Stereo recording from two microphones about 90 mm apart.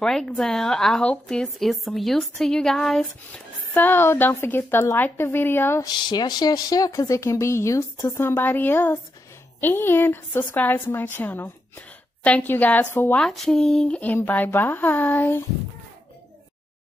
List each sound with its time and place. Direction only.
0.0 s a woman's voice: 5° left (ahead or behind)
3.7 s a woman's voice: 20° left (ahead or behind)
5.8 s a woman's voice: 55° left (ahead or behind); by 13.2 s 20° left (ahead or behind)
13.2 s a woman's voice: 5° left (ahead or behind); by 15.4 s 20° left (ahead or behind)